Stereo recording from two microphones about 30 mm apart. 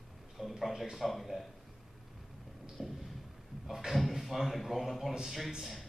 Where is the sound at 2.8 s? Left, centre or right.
Centre.